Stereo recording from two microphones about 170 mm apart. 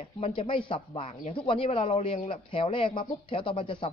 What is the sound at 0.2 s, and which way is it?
Speech, 30° left (ahead or behind).